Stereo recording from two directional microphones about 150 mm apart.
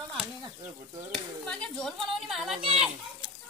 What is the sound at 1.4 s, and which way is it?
A woman's voice, 5° left (ahead or behind).